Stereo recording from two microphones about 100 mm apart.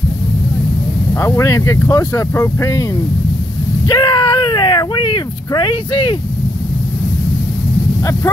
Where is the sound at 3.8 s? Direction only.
45° left (ahead or behind).